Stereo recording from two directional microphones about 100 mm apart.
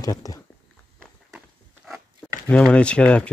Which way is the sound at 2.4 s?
10° left (ahead or behind).